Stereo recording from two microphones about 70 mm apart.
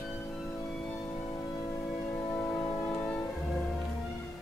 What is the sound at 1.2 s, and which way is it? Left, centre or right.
Music, left.